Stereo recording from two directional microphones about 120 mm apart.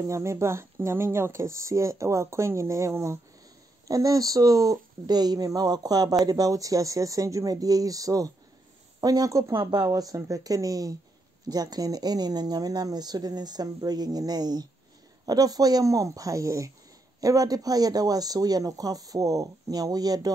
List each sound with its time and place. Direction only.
0.0 s speech: 25° right (ahead or behind)
9.6 s speech: 45° right (ahead or behind)
9.8 s speech: 30° right (ahead or behind)